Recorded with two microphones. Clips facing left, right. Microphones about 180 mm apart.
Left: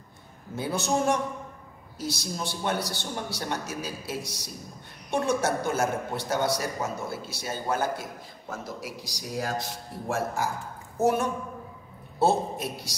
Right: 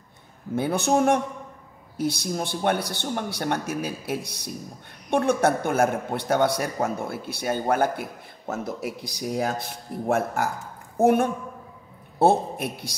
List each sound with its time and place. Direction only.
0.6 s a man's voice: 60° right (ahead or behind)